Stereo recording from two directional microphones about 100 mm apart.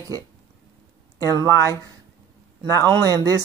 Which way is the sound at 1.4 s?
35° right (ahead or behind).